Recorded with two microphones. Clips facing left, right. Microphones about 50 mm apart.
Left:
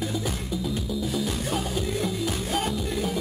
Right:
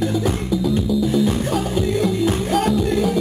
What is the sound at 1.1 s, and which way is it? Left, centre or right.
Music, right.